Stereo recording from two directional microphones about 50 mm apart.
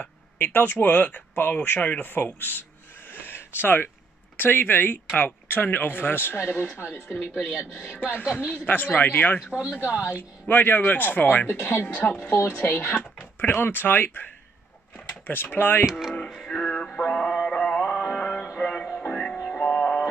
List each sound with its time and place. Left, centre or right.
0.0 s speech: left
3.1 s a sound: left
4.4 s speech: left
10.5 s speech: left
15.2 s speech: left
15.8 s speech: centre
16.3 s music: centre